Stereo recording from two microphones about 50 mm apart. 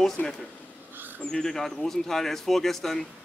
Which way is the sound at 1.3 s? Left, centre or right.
Centre.